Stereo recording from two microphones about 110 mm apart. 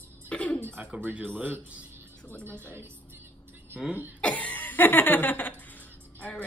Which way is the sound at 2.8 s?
20° right (ahead or behind).